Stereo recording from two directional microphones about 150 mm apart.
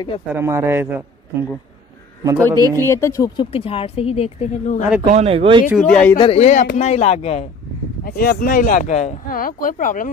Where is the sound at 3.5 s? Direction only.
40° left (ahead or behind).